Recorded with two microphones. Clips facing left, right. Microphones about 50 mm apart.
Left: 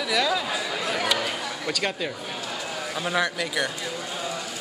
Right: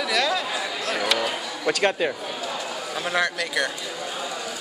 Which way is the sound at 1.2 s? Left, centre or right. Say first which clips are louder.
Right 3 dB; centre.